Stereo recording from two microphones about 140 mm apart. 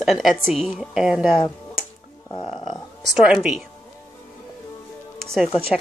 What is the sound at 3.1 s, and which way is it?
Speech, 5° right (ahead or behind).